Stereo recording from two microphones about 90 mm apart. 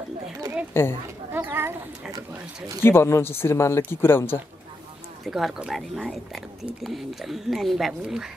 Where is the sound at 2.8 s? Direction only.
25° left (ahead or behind).